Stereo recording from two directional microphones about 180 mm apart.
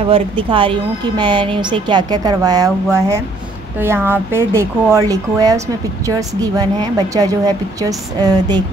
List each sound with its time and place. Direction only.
0.1 s speech: 30° right (ahead or behind)